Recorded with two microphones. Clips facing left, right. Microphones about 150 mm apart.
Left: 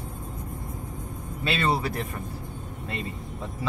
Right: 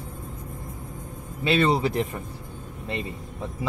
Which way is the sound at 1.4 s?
20° right (ahead or behind).